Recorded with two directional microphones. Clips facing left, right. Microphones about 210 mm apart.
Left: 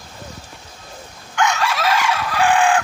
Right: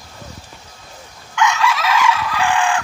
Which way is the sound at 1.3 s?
50° left (ahead or behind).